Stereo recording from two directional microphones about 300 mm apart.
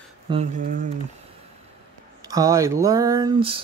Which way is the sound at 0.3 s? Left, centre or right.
Right.